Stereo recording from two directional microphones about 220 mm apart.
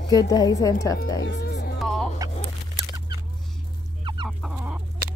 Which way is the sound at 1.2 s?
50° left (ahead or behind).